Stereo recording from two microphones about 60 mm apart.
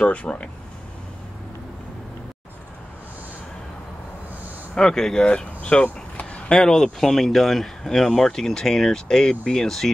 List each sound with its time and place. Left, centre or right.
0.0 s speech: left
4.7 s speech: centre